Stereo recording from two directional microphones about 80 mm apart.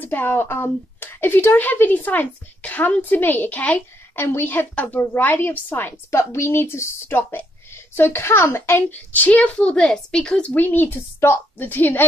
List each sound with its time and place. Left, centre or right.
0.0 s speech: left; by 10.5 s centre
10.5 s speech: left